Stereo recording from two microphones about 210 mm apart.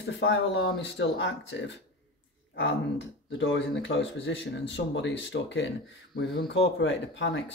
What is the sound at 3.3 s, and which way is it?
Speech, 60° left (ahead or behind).